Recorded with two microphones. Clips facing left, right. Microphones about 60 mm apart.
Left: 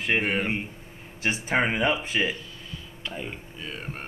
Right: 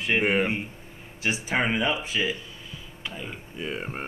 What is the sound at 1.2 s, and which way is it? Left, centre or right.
Speech, left.